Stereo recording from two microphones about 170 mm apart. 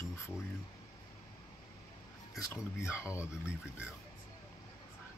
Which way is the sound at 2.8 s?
15° left (ahead or behind).